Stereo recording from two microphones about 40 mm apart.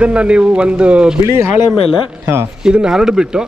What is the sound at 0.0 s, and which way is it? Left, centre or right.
A man's voice, right.